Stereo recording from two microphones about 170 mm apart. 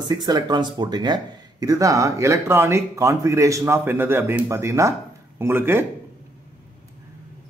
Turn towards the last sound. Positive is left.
turn(degrees=-15)  # may be behind; listen again after turning